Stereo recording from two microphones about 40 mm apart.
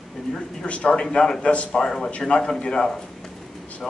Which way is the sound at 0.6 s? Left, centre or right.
Left.